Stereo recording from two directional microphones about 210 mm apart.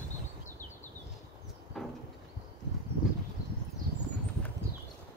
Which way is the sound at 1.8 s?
Centre (ahead or behind).